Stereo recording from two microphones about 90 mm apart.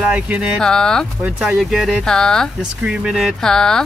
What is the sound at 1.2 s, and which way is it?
Speech, 15° right (ahead or behind).